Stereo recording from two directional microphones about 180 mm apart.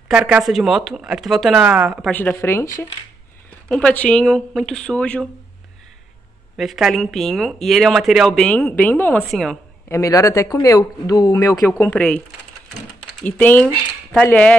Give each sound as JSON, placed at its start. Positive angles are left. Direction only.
{"t": 0.1, "sound": "speech", "side_deg": -5}
{"t": 6.5, "sound": "speech", "side_deg": 0}
{"t": 9.8, "sound": "speech", "side_deg": 15}
{"t": 11.8, "sound": "speech", "side_deg": 10}
{"t": 13.2, "sound": "speech", "side_deg": 10}